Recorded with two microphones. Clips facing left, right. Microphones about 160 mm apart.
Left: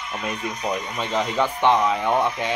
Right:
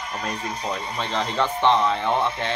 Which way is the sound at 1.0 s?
10° left (ahead or behind).